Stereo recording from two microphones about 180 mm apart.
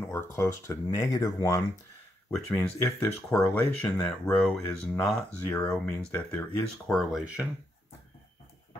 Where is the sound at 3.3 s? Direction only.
15° left (ahead or behind).